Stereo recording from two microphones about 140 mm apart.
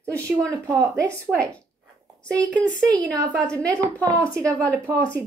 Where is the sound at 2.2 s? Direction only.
10° left (ahead or behind).